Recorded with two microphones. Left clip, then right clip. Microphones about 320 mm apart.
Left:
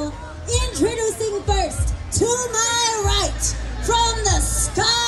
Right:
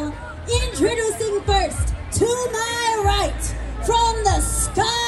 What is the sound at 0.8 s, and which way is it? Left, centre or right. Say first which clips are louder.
Music: right 1 dB; right.